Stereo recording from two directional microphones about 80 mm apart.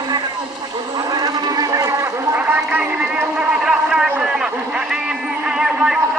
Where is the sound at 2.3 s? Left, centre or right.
Centre.